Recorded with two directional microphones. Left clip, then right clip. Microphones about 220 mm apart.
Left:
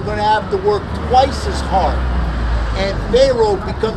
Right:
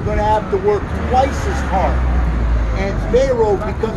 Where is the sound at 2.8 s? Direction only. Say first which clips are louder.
Left 3 dB; 5° left (ahead or behind).